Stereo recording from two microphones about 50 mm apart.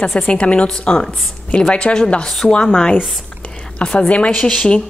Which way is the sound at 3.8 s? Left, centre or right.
Left.